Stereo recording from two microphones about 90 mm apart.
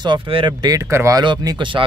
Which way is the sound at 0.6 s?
45° right (ahead or behind).